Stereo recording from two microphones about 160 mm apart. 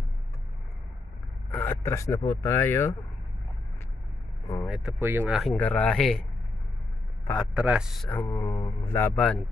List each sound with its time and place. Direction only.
1.5 s speech: 15° left (ahead or behind)
4.6 s speech: centre (ahead or behind)
4.9 s speech: 15° right (ahead or behind)
5.4 s speech: 5° left (ahead or behind)
7.5 s speech: 5° right (ahead or behind)
8.1 s speech: 15° left (ahead or behind)